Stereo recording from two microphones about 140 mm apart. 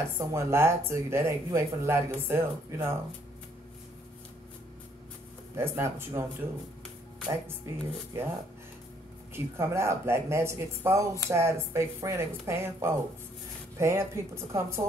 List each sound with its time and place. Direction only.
0.2 s speech: 20° right (ahead or behind)
5.6 s speech: 15° right (ahead or behind)
7.4 s speech: 20° right (ahead or behind)
9.3 s speech: 20° right (ahead or behind)